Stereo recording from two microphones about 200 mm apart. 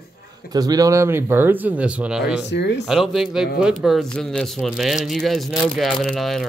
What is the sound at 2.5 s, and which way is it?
Speech, 60° left (ahead or behind).